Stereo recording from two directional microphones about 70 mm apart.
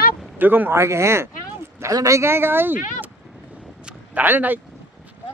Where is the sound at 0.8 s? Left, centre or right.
Right.